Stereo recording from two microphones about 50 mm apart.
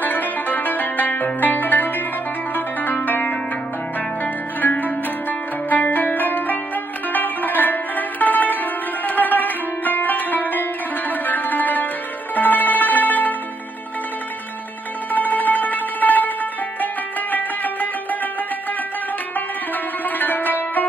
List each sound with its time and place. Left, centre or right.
0.0 s music: left
4.2 s zither: left
5.7 s music: left
15.1 s music: left
20.1 s music: left